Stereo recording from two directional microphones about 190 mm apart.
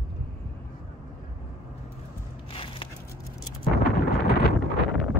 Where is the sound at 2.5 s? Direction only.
30° left (ahead or behind).